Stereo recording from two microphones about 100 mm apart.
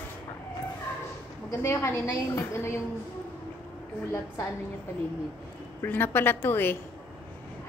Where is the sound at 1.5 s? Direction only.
25° left (ahead or behind).